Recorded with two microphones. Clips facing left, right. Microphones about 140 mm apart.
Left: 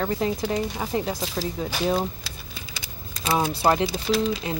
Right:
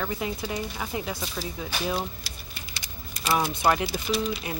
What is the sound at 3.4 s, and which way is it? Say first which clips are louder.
Speech: left 4 dB; 30° left (ahead or behind).